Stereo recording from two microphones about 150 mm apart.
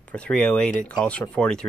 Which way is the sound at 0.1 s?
5° left (ahead or behind).